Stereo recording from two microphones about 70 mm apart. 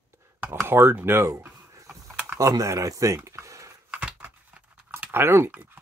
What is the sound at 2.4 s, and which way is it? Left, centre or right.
Speech, right.